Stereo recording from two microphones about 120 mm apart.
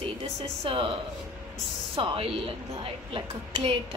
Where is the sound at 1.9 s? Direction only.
50° right (ahead or behind).